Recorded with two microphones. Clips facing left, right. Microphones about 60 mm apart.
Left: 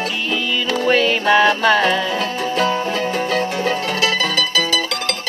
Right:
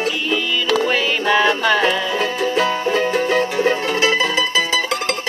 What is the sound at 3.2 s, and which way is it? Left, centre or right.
Music, centre.